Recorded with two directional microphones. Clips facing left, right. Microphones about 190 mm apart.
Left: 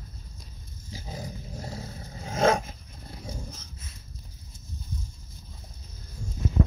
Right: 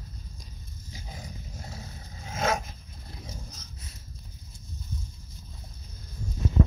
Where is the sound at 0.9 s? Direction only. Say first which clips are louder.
Left 6 dB; 35° left (ahead or behind).